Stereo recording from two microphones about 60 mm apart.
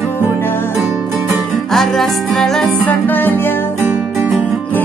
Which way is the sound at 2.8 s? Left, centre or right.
Left.